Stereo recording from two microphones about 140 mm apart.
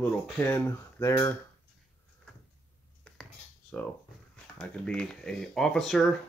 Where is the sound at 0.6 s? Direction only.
20° left (ahead or behind).